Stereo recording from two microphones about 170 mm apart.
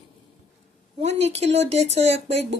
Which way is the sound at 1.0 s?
40° right (ahead or behind).